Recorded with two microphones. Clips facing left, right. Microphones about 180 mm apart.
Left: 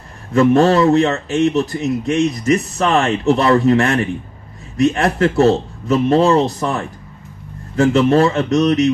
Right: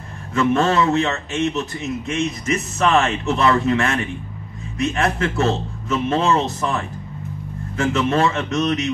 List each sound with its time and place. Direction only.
0.3 s a man's voice: 35° left (ahead or behind)